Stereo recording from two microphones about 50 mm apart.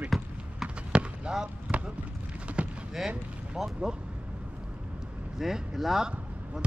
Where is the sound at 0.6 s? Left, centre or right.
Right.